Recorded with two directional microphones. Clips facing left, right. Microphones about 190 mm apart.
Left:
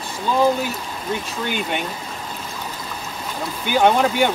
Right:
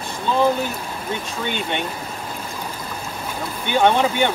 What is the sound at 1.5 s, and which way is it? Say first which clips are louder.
Speech: even; 5° left (ahead or behind).